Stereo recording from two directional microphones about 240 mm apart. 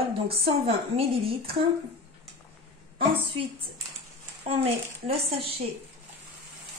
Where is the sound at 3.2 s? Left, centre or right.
Right.